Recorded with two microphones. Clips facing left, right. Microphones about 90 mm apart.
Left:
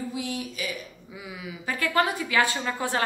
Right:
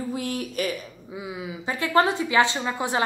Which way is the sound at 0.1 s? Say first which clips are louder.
Right 3 dB; 50° right (ahead or behind).